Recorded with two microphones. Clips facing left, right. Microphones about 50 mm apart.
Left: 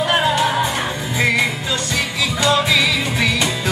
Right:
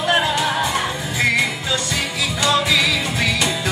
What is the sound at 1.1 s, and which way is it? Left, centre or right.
Music, centre.